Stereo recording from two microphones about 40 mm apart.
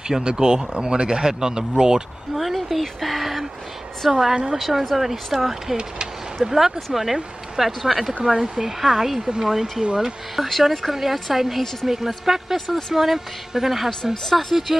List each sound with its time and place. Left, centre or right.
0.2 s speech: right
2.3 s speech: centre
10.3 s speech: centre
12.5 s speech: centre
12.9 s speech: centre